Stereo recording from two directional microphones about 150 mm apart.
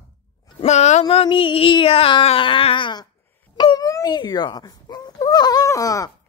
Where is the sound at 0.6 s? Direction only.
50° left (ahead or behind); by 3.0 s 35° left (ahead or behind).